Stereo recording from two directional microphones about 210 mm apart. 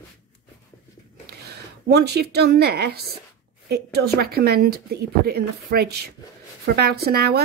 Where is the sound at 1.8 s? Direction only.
50° right (ahead or behind).